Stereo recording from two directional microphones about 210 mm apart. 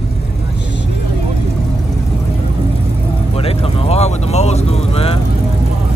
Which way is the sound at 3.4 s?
25° left (ahead or behind).